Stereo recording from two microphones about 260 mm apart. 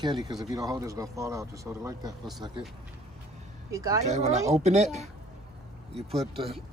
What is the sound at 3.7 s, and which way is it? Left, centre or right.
Speech, centre.